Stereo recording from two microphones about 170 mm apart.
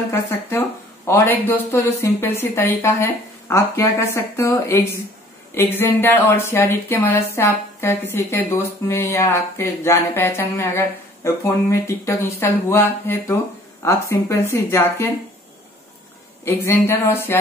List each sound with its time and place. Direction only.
0.1 s speech: 15° left (ahead or behind)
16.4 s speech: 15° left (ahead or behind)